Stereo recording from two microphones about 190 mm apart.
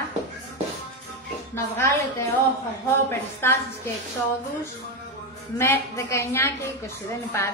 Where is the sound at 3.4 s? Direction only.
15° left (ahead or behind).